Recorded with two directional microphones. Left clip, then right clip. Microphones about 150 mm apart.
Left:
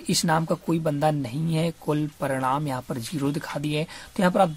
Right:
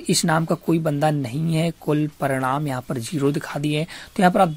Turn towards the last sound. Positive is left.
turn(degrees=-20)  # may be behind; listen again after turning